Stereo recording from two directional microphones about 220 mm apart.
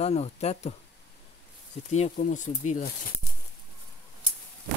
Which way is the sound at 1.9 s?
30° left (ahead or behind).